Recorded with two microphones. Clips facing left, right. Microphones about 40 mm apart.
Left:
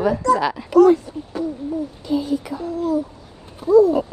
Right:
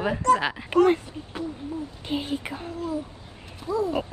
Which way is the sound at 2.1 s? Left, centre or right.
Right.